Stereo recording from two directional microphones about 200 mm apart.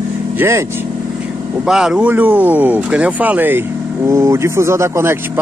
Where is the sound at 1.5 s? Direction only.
5° right (ahead or behind).